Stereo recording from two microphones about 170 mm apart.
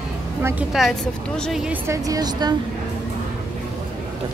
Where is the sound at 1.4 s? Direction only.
Centre (ahead or behind).